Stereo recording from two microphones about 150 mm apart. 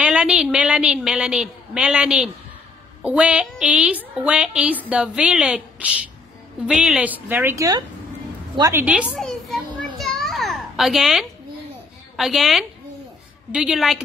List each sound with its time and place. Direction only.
0.0 s a woman's voice: 5° right (ahead or behind); by 8.8 s 25° right (ahead or behind)
8.8 s children playing: 5° right (ahead or behind)
12.2 s a woman's voice: centre (ahead or behind)